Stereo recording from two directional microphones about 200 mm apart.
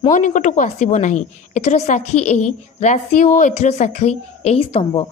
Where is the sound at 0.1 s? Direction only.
40° left (ahead or behind).